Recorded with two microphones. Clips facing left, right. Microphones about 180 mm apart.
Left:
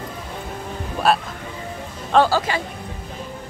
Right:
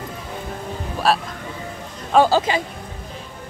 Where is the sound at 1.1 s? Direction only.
Centre (ahead or behind).